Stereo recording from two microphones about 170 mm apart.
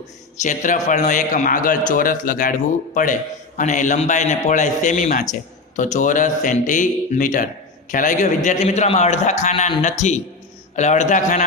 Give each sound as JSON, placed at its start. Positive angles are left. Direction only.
{"t": 0.4, "sound": "a man's voice", "side_deg": 50}